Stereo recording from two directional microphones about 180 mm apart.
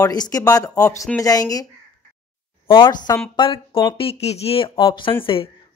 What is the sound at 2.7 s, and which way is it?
Speech, 25° left (ahead or behind).